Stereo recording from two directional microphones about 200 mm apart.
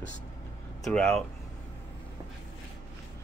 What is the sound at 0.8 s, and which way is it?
Speech, 5° left (ahead or behind).